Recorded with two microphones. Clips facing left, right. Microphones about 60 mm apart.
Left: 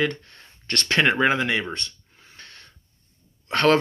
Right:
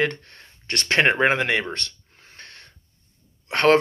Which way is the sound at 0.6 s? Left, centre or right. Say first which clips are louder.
Left 1 dB; right.